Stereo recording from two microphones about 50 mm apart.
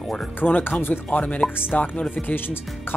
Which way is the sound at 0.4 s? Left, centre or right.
Left.